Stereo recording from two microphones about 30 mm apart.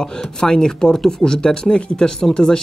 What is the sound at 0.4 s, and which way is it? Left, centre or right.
Speech, left.